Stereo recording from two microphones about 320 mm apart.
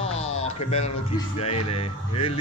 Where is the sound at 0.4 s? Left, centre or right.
Centre.